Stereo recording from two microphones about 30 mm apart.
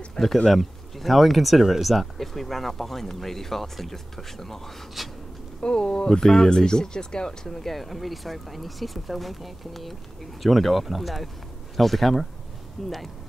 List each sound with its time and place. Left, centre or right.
0.2 s speech: left
0.5 s speech: centre
5.0 s speech: centre
5.6 s speech: left
6.2 s speech: centre
7.7 s speech: centre